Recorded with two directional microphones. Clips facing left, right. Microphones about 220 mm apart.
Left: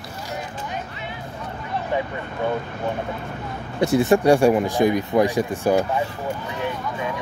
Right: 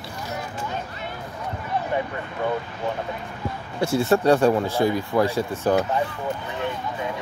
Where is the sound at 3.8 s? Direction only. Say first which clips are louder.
Left 3 dB; 15° left (ahead or behind).